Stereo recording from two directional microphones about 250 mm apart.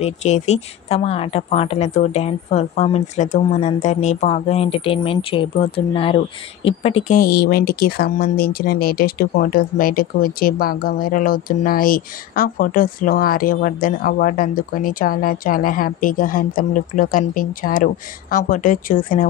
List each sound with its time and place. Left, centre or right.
0.0 s speech: left